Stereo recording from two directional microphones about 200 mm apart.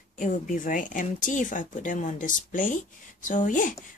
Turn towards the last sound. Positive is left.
turn(degrees=40)  # may be behind; listen again after turning